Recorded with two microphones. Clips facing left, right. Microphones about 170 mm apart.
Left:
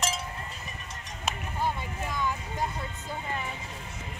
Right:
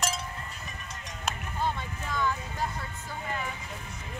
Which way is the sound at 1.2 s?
10° left (ahead or behind).